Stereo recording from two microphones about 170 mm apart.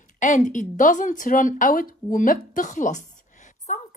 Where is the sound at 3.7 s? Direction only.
50° left (ahead or behind).